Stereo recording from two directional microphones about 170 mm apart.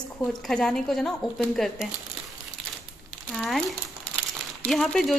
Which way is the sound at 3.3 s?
Centre (ahead or behind).